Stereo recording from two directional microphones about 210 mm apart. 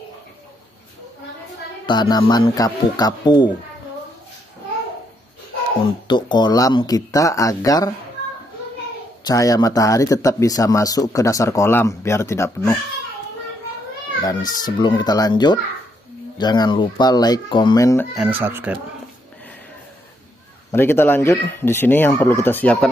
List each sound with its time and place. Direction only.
1.9 s speech: 20° left (ahead or behind)
6.0 s speech: 20° left (ahead or behind)
9.2 s speech: 15° left (ahead or behind)
14.2 s speech: 20° left (ahead or behind)
18.1 s speech: 5° right (ahead or behind)
20.7 s speech: 10° left (ahead or behind)